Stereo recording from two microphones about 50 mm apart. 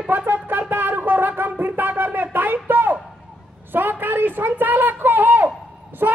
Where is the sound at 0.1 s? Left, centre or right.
Right.